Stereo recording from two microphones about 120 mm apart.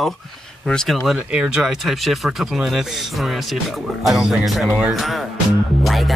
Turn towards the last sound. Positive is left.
turn(degrees=0)  # may be behind; listen again after turning